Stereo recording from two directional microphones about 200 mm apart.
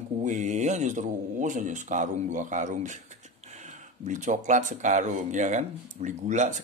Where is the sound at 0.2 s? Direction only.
35° right (ahead or behind).